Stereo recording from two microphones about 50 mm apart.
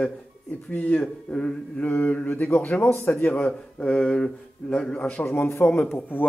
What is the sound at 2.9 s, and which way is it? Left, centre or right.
Speech, left.